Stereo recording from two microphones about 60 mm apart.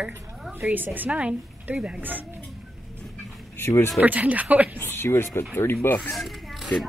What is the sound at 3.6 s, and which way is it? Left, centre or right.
Speech, left.